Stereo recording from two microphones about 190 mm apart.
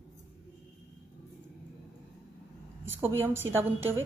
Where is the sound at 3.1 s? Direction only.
10° right (ahead or behind).